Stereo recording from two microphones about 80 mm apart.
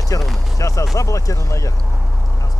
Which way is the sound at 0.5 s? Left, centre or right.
Left.